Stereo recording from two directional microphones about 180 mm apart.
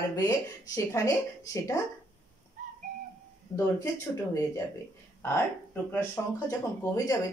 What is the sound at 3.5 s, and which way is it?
A woman's voice, 15° left (ahead or behind).